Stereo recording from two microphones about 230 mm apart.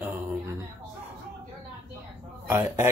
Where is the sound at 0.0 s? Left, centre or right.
Centre.